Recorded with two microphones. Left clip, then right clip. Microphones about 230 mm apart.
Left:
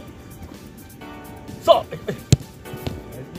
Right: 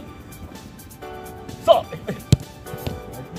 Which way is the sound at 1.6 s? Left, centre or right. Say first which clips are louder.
Even; left.